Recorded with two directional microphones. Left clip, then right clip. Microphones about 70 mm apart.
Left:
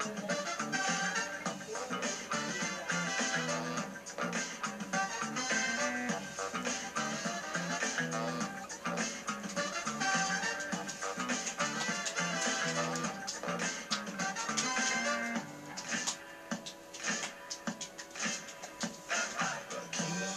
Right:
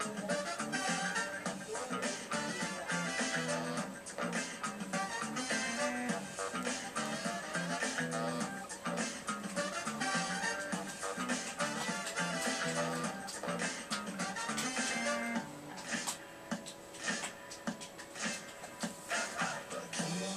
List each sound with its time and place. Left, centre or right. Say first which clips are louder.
0.0 s music: left 1 dB; left
18.8 s music: left 2 dB; left